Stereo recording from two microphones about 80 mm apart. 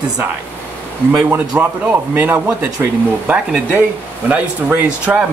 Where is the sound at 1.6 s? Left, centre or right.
Right.